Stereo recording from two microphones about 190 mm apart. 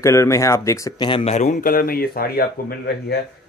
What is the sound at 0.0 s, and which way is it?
A man's voice, 15° left (ahead or behind).